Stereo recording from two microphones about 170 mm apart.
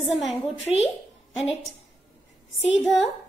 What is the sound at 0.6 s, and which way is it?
Speech, 40° left (ahead or behind).